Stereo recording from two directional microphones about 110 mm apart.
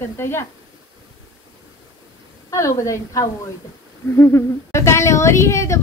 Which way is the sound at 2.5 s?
25° left (ahead or behind).